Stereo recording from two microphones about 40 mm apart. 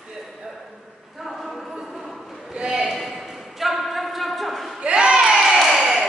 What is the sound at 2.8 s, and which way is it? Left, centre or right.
Clip-clop, centre.